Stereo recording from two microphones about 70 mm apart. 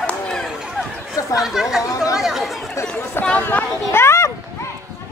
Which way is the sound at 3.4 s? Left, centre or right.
Left.